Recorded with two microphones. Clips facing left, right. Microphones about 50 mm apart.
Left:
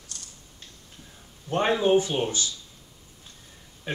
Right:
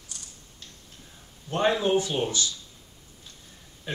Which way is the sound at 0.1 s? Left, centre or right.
Centre.